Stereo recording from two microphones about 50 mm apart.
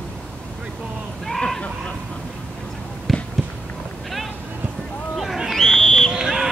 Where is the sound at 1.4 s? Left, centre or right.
Centre.